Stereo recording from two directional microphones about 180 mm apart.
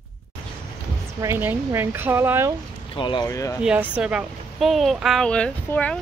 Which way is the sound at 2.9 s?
25° left (ahead or behind).